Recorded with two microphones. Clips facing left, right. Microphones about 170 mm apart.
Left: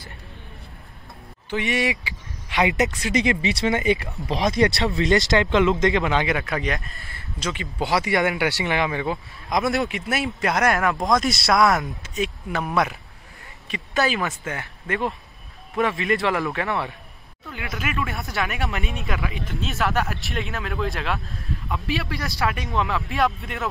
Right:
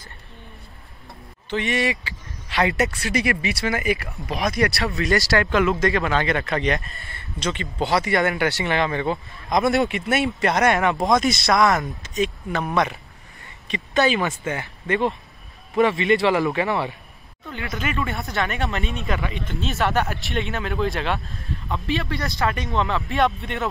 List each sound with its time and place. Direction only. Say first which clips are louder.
1.5 s speech: right 1 dB; 15° left (ahead or behind)
6.2 s a man's voice: right 2 dB; 5° left (ahead or behind)
7.9 s a man's voice: even; 15° left (ahead or behind)